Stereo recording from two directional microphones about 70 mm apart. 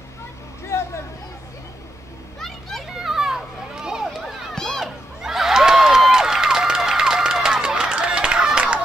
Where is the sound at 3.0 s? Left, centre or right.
Centre.